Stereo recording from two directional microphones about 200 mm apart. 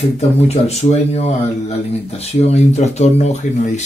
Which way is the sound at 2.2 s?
30° left (ahead or behind).